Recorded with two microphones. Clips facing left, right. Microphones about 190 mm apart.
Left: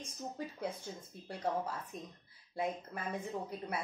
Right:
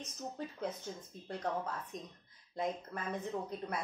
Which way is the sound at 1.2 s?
10° left (ahead or behind).